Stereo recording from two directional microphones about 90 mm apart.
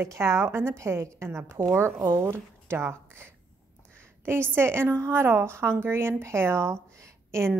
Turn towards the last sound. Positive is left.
turn(degrees=-30)  # may be behind; listen again after turning